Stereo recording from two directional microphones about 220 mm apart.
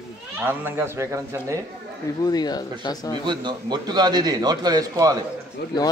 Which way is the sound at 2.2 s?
20° left (ahead or behind).